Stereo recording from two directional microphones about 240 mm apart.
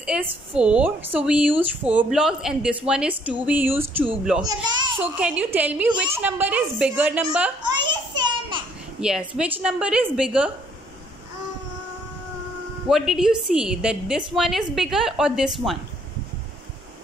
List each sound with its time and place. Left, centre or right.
0.0 s a woman's voice: centre
5.1 s a woman's voice: centre
7.6 s a sound: centre
9.0 s a woman's voice: centre
12.8 s a woman's voice: centre